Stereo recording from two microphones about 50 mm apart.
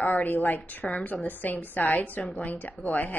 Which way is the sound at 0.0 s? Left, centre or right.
Left.